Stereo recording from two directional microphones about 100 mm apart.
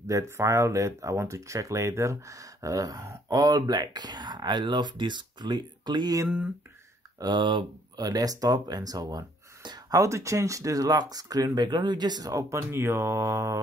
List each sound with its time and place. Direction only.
0.0 s speech: 30° right (ahead or behind)
7.2 s speech: 50° right (ahead or behind); by 13.6 s 30° right (ahead or behind)